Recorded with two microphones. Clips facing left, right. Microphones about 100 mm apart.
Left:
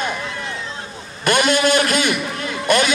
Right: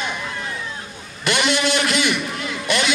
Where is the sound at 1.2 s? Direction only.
45° left (ahead or behind).